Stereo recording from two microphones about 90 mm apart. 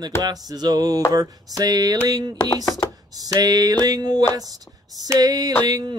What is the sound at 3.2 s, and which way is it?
Speech, 45° right (ahead or behind).